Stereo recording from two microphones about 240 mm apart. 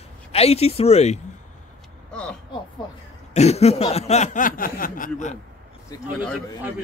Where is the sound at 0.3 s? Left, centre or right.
Left.